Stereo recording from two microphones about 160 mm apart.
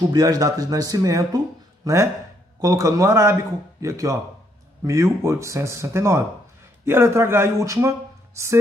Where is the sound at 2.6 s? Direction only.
20° right (ahead or behind).